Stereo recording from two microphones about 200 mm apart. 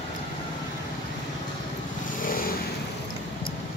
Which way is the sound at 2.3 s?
45° left (ahead or behind).